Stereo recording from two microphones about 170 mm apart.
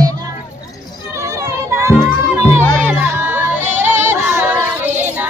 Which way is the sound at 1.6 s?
15° right (ahead or behind).